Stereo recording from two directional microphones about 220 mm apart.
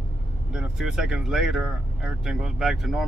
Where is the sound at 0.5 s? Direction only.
5° right (ahead or behind).